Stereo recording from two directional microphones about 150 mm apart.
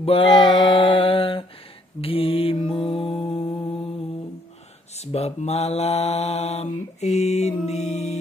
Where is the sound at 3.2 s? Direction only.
25° left (ahead or behind).